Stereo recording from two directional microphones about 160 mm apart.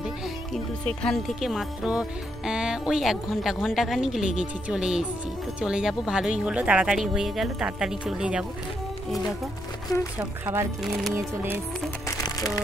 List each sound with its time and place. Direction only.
0.8 s speech: 5° left (ahead or behind)
10.1 s speech: 15° right (ahead or behind)
12.2 s music: 20° left (ahead or behind)